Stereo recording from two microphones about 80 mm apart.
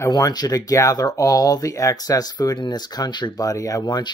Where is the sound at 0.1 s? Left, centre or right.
Left.